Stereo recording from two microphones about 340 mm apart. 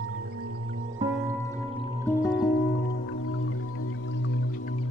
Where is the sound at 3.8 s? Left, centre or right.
Left.